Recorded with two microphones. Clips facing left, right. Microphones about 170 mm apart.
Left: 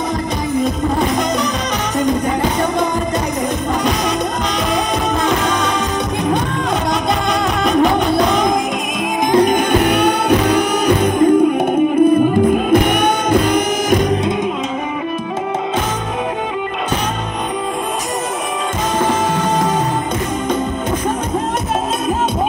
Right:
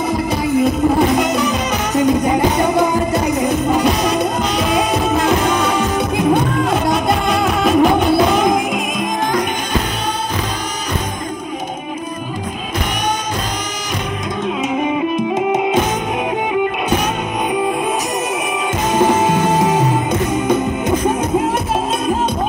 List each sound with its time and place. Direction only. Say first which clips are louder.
7.6 s music: right 1 dB; centre (ahead or behind)
9.7 s music: left 7 dB; 70° left (ahead or behind)
19.0 s music: right 3 dB; 10° right (ahead or behind)